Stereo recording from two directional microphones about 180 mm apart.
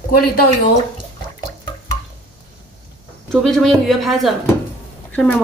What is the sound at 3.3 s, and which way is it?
A woman's voice, centre (ahead or behind).